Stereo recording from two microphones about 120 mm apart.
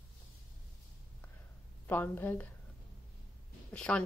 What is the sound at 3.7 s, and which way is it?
Speech, 10° left (ahead or behind).